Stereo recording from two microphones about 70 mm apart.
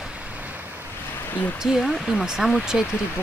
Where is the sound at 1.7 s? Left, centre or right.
Centre.